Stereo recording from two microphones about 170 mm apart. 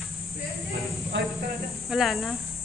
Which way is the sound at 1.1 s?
90° right.